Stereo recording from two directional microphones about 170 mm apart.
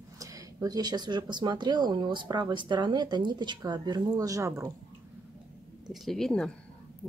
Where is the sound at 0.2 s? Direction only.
20° right (ahead or behind).